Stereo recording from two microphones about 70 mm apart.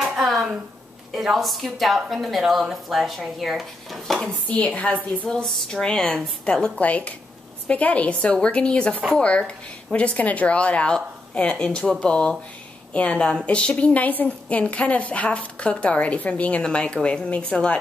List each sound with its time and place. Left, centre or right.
0.2 s a sound: centre
1.1 s a woman's voice: centre
4.5 s a woman's voice: centre